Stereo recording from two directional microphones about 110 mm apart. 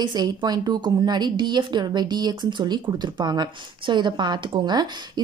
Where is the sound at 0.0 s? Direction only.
40° right (ahead or behind).